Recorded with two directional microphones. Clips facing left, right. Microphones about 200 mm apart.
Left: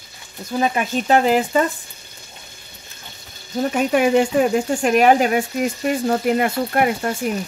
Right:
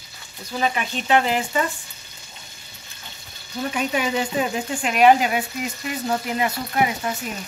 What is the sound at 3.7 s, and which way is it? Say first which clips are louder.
Speech: left 8 dB; 50° left (ahead or behind).